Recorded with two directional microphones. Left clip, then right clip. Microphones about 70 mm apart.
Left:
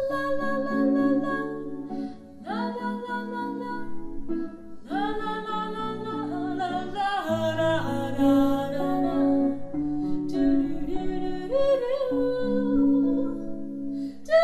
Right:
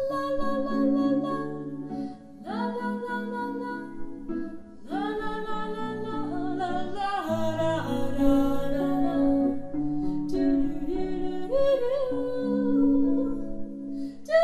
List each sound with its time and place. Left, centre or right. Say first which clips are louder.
0.1 s music: left 1 dB; left
2.5 s music: even; left
4.9 s music: left 2 dB; left